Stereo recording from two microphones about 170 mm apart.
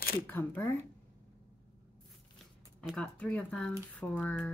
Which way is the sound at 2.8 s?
5° left (ahead or behind).